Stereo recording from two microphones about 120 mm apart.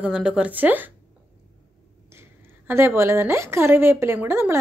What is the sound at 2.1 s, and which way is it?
A woman's voice, 20° right (ahead or behind).